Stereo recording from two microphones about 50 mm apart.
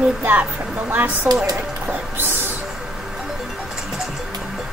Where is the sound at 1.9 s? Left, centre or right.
Right.